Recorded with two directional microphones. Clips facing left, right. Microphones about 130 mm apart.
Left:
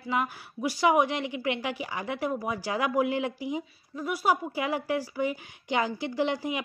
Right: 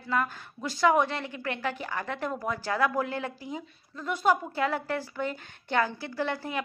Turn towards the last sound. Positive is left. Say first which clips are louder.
# left 3 dB
turn(degrees=15)  # may be behind; listen again after turning